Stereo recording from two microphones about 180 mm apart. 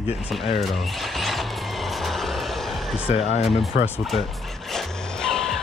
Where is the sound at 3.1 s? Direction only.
35° left (ahead or behind).